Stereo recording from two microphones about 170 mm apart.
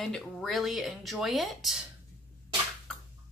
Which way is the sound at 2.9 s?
5° left (ahead or behind).